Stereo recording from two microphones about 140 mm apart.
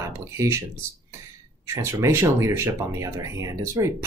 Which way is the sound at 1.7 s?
20° right (ahead or behind).